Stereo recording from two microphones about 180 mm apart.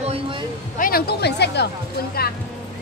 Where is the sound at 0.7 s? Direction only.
55° left (ahead or behind).